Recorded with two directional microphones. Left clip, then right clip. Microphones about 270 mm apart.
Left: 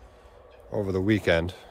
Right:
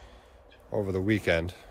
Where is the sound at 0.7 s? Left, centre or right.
Centre.